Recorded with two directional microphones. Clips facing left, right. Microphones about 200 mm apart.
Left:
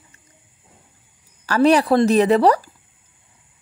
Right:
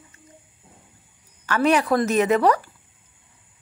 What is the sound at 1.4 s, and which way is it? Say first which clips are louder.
Speech: left 5 dB; 35° left (ahead or behind).